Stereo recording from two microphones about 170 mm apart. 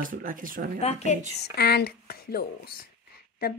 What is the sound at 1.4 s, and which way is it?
Speech, 70° left (ahead or behind).